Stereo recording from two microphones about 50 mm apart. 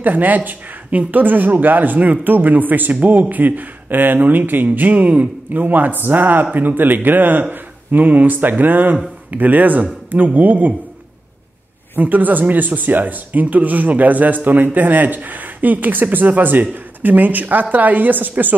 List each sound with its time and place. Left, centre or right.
0.0 s speech: right
11.9 s speech: right